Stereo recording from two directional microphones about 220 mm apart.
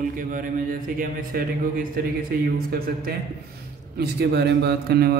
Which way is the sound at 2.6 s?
45° right (ahead or behind).